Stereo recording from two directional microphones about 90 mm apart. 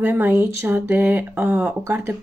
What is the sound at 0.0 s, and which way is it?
Speech, 20° right (ahead or behind).